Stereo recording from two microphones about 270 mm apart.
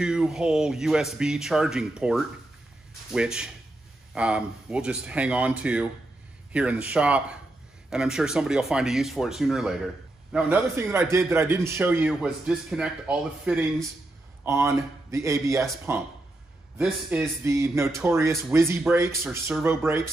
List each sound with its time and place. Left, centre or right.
0.0 s a man's voice: centre